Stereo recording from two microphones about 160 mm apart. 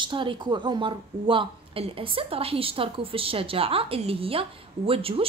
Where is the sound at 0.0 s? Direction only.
30° right (ahead or behind).